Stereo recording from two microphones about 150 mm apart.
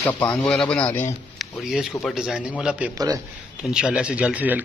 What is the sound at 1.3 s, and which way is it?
A man's voice, centre (ahead or behind).